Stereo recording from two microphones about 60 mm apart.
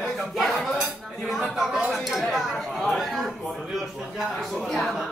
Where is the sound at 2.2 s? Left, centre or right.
Centre.